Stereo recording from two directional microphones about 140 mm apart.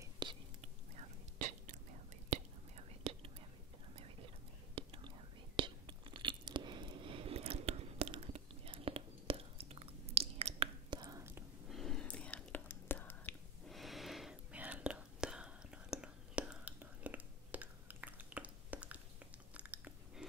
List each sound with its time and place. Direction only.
0.0 s whispering: 30° right (ahead or behind)
0.6 s whispering: 55° right (ahead or behind)
4.7 s whispering: 40° right (ahead or behind)
5.6 s crunch: 35° right (ahead or behind)
11.0 s whispering: 25° right (ahead or behind)
11.7 s whispering: 5° left (ahead or behind)
13.7 s whispering: centre (ahead or behind)
19.5 s biting: 10° right (ahead or behind)